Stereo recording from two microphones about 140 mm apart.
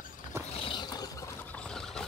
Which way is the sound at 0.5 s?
35° left (ahead or behind).